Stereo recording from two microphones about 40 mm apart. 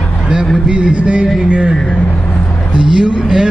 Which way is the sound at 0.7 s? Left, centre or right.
Right.